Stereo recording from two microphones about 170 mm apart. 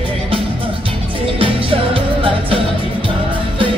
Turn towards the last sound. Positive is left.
turn(degrees=-30)  # may be behind; listen again after turning